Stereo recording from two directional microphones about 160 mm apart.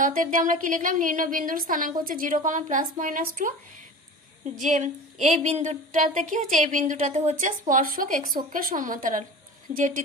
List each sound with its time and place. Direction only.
0.0 s speech: 55° right (ahead or behind)
4.6 s speech: 50° right (ahead or behind)